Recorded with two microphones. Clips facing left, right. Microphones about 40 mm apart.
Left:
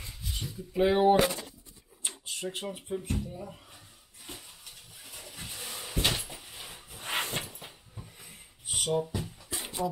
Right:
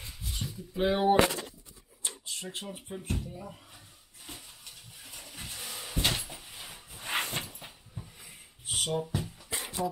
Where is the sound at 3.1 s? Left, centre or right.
Centre.